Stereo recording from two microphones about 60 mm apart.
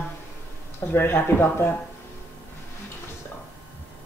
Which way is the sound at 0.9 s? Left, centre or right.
Left.